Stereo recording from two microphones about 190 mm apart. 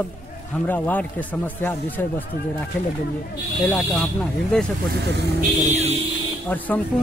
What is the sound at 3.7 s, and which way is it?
Speech, centre (ahead or behind).